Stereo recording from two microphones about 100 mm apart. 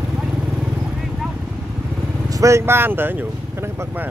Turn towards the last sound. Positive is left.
turn(degrees=-20)  # may be behind; listen again after turning